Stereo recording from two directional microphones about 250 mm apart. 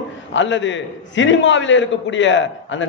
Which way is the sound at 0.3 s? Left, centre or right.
Left.